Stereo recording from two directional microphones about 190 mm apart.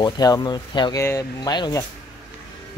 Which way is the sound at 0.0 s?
20° left (ahead or behind).